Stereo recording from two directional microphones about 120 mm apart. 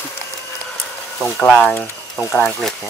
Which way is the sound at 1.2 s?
5° left (ahead or behind).